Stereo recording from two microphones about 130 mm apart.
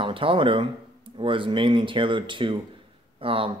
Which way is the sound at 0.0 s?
45° right (ahead or behind).